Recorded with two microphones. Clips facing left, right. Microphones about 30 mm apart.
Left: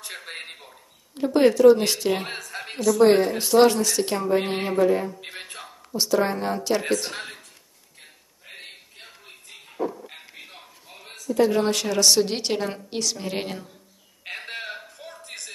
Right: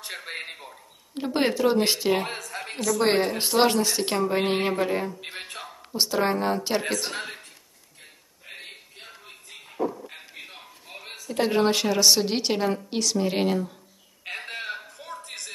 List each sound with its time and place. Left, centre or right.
0.0 s speech: centre
1.1 s a woman's voice: right
2.2 s speech: centre
3.0 s a woman's voice: centre
5.1 s speech: centre
5.9 s a woman's voice: centre
6.3 s speech: centre
8.5 s music: centre
11.0 s a sound: right
11.2 s a woman's voice: right
11.6 s speech: centre
14.2 s a sound: centre